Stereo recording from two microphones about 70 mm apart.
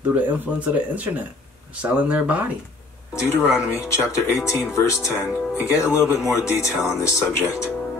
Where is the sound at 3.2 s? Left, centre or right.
Left.